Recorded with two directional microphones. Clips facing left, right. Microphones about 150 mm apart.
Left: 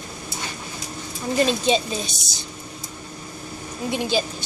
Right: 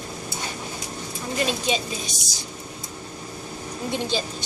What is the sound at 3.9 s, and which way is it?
Speech, 10° left (ahead or behind).